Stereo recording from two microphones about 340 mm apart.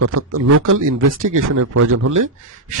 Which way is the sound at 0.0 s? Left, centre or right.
Right.